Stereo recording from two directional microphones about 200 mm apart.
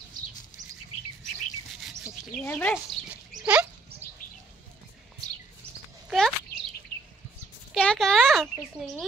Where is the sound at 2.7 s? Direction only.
5° right (ahead or behind).